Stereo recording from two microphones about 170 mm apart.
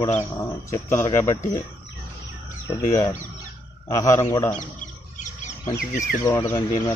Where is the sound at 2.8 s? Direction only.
20° left (ahead or behind).